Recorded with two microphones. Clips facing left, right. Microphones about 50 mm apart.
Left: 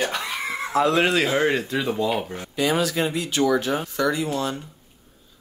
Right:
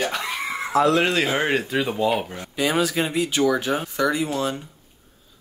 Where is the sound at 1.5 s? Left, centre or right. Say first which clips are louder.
Right 1 dB; centre.